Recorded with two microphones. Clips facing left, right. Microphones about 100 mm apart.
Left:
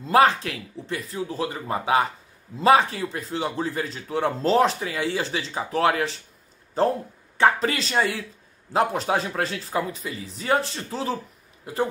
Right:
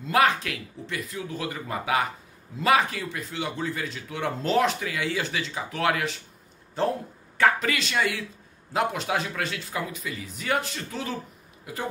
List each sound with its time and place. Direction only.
0.0 s a man's voice: 35° left (ahead or behind)
7.3 s a man's voice: 30° left (ahead or behind)